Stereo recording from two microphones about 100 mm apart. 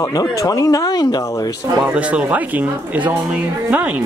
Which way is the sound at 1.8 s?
10° right (ahead or behind).